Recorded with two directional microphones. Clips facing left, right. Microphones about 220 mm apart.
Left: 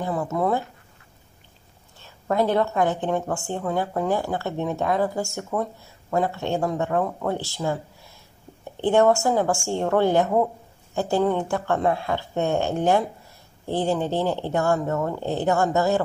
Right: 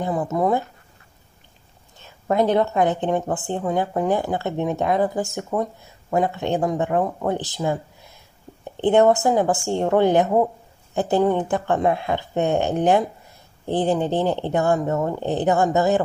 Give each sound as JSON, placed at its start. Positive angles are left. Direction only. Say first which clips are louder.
{"t": 0.0, "sound": "speech", "louder": "right 3 dB", "side_deg": -20}
{"t": 2.0, "sound": "speech", "louder": "right 2 dB", "side_deg": -20}
{"t": 8.8, "sound": "speech", "louder": "right 2 dB", "side_deg": -20}